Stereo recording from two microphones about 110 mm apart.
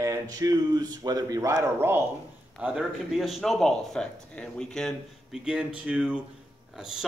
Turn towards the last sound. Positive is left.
turn(degrees=-5)  # may be behind; listen again after turning